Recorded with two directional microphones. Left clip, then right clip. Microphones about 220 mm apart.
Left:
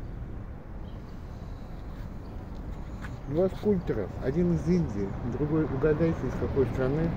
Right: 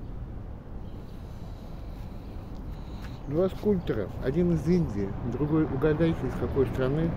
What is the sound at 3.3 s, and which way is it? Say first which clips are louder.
Speech: even; 5° right (ahead or behind).